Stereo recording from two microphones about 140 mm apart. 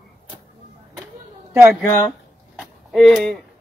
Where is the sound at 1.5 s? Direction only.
20° right (ahead or behind).